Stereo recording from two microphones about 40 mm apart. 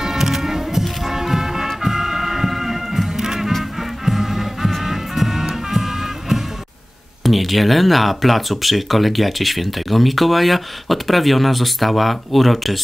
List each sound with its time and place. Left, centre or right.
0.0 s music: centre
7.2 s speech: centre